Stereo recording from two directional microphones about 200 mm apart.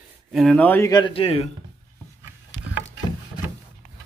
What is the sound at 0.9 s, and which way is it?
Speech, 25° left (ahead or behind).